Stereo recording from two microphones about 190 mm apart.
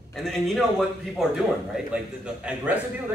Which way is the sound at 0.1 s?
Centre (ahead or behind).